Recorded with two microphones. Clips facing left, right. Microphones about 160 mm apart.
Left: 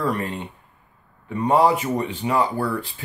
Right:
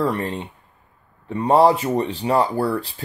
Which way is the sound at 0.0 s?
30° right (ahead or behind).